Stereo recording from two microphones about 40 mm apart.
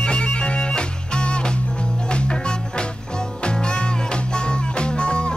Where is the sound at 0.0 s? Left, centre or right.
Left.